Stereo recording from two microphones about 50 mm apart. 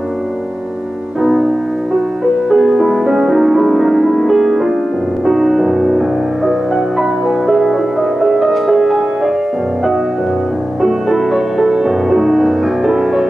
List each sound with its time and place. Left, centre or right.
1.2 s music: centre
2.5 s music: centre
10.8 s music: centre